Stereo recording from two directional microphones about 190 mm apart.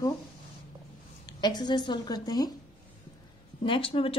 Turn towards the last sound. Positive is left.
turn(degrees=30)  # may be behind; listen again after turning